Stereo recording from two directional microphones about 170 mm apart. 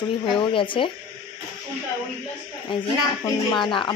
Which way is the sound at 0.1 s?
30° left (ahead or behind).